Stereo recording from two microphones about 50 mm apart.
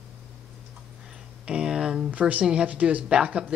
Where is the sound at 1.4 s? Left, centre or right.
Centre.